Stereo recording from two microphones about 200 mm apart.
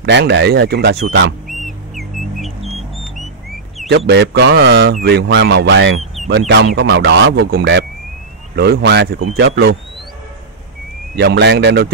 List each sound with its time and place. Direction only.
0.0 s speech: 60° right (ahead or behind)
1.5 s music: centre (ahead or behind)
4.0 s speech: 55° right (ahead or behind)
6.2 s a sound: centre (ahead or behind)
6.5 s speech: 55° right (ahead or behind)
11.1 s speech: 55° right (ahead or behind)